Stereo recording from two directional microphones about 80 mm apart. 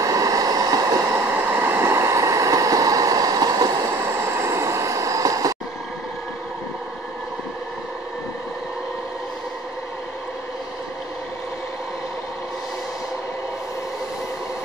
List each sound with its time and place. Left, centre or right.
0.0 s vehicle: right
1.1 s vehicle: right
4.0 s vehicle: right